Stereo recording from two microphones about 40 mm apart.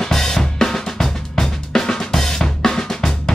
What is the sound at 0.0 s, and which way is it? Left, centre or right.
Drum kit, centre.